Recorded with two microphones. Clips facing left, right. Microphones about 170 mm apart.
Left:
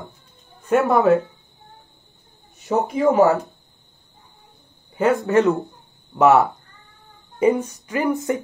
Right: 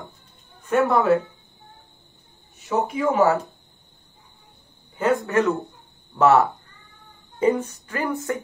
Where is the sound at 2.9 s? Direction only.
40° left (ahead or behind).